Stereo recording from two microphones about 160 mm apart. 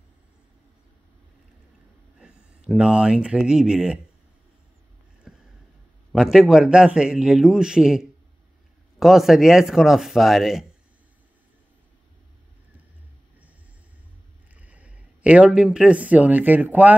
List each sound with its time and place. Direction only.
2.1 s speech: 5° right (ahead or behind)
5.3 s a sound: centre (ahead or behind)
6.1 s a man's voice: 5° right (ahead or behind)
14.5 s speech: 10° right (ahead or behind)